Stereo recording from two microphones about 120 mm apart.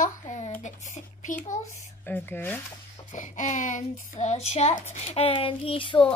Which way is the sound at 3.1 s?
90° left.